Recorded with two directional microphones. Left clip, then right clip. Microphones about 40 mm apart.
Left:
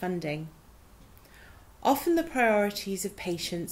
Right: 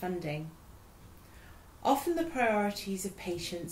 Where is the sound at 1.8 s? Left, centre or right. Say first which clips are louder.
Left 4 dB; left.